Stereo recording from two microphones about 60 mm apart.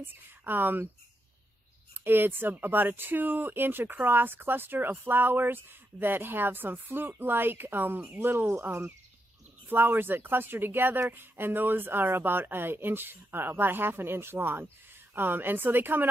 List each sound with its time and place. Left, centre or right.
0.0 s speech: right
2.0 s speech: right